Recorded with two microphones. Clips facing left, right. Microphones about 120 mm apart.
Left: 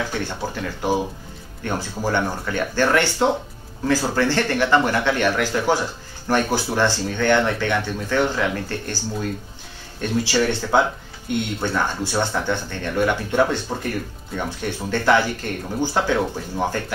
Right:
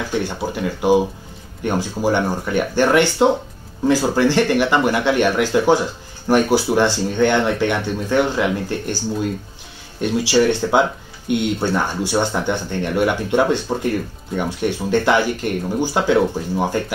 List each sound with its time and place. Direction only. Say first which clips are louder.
0.2 s speech: right 4 dB; 15° right (ahead or behind)
9.9 s speech: right 4 dB; 15° right (ahead or behind)